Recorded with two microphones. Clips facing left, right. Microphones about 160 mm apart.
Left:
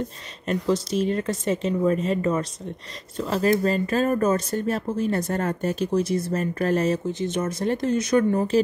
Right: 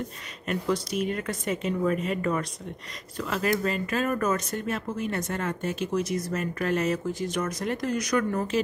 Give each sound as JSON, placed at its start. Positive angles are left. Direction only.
{"t": 0.5, "sound": "speech", "side_deg": 25}
{"t": 7.1, "sound": "speech", "side_deg": 25}